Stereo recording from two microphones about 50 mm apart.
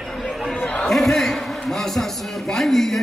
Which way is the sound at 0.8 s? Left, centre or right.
Centre.